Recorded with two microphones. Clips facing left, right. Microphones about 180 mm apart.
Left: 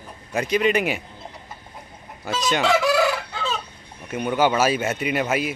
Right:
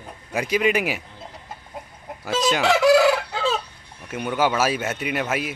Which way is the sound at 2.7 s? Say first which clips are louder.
Right 5 dB; 75° right (ahead or behind).